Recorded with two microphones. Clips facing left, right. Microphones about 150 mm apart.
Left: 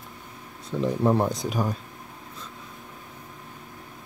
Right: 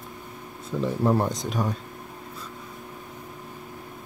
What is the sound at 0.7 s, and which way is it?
Speech, centre (ahead or behind).